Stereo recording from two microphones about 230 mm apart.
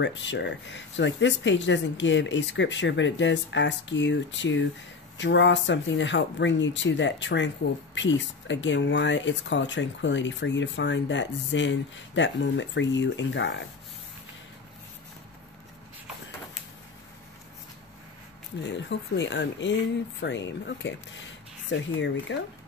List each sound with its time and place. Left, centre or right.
0.0 s speech: left
18.6 s speech: left